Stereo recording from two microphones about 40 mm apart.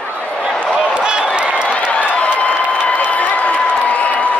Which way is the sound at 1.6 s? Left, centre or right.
Left.